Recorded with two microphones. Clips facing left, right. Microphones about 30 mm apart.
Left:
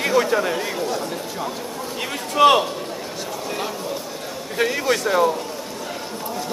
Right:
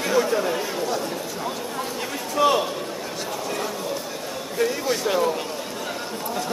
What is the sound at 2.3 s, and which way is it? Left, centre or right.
Speech, left.